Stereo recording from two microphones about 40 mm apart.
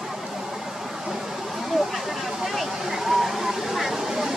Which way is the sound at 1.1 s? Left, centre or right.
Centre.